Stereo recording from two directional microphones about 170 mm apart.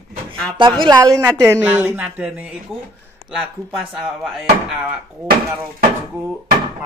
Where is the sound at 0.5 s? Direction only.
30° right (ahead or behind); by 4.1 s centre (ahead or behind).